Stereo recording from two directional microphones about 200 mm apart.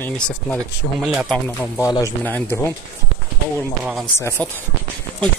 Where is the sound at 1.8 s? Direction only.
15° left (ahead or behind).